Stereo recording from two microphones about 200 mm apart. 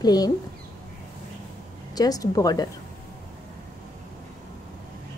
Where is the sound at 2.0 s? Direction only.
20° left (ahead or behind).